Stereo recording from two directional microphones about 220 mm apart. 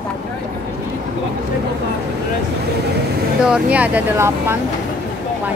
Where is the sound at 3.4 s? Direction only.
5° right (ahead or behind).